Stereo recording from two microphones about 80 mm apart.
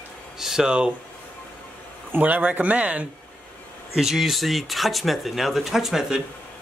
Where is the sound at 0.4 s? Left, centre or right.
Centre.